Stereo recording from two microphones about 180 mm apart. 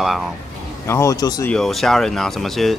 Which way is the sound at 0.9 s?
15° left (ahead or behind).